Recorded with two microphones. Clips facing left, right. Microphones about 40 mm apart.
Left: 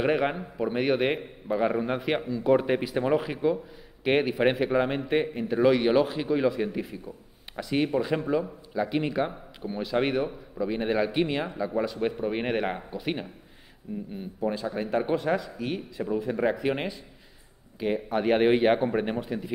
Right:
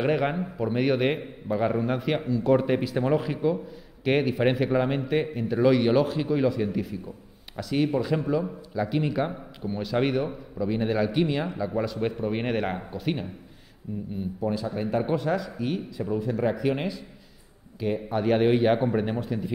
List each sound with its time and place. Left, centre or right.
0.0 s a man's voice: centre; by 18.8 s left
18.9 s a man's voice: centre